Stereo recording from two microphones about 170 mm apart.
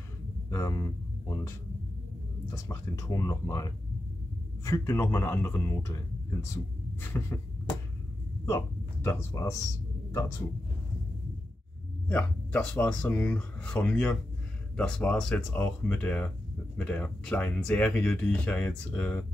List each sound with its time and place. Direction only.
0.5 s speech: 20° left (ahead or behind)
2.5 s speech: 20° left (ahead or behind)
8.5 s speech: 15° left (ahead or behind)
12.1 s speech: 10° left (ahead or behind)